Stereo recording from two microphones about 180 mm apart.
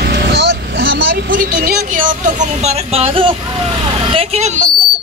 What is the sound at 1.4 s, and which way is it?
Speech, 55° right (ahead or behind).